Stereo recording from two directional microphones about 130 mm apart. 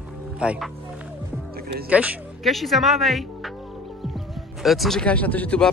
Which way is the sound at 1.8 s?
10° right (ahead or behind).